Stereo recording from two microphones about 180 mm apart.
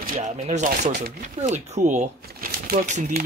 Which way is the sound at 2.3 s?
55° right (ahead or behind).